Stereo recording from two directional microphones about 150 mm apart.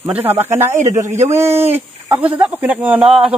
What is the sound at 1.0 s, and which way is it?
Speech, 55° right (ahead or behind).